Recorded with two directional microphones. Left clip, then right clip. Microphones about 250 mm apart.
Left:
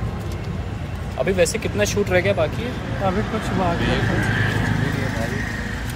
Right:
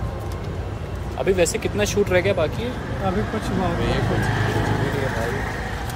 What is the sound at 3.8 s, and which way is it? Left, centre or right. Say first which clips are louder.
Vehicle: left 1 dB; right.